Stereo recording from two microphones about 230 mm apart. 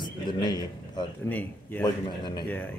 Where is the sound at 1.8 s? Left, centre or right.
Centre.